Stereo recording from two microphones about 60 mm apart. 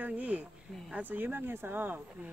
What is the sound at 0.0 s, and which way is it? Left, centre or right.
Speech, right.